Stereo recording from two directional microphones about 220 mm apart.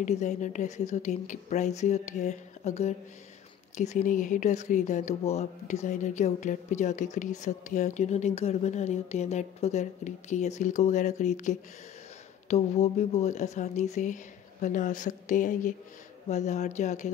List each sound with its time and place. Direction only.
0.0 s speech: 30° left (ahead or behind)